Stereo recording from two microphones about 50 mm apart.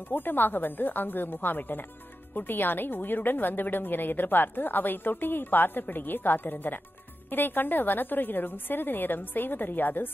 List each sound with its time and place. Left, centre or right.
0.1 s a woman's voice: left